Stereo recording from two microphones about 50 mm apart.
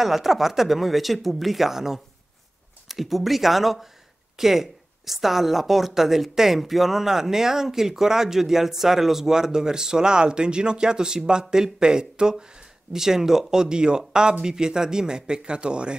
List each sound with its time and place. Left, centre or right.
0.0 s speech: centre